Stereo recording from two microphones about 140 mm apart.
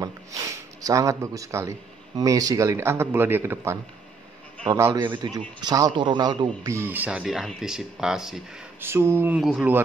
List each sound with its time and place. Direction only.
0.0 s a man's voice: 20° right (ahead or behind)
4.9 s a man's voice: 35° right (ahead or behind)
6.7 s speech: 15° right (ahead or behind)
8.8 s a sound: 20° right (ahead or behind)
9.4 s speech: centre (ahead or behind)